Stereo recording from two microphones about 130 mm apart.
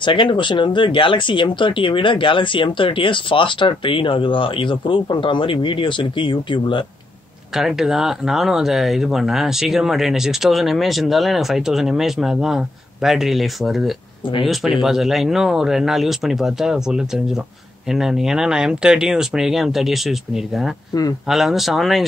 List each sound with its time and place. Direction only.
0.0 s speech: 40° left (ahead or behind)
7.5 s speech: 5° right (ahead or behind)
20.9 s speech: 25° left (ahead or behind)
21.3 s speech: centre (ahead or behind)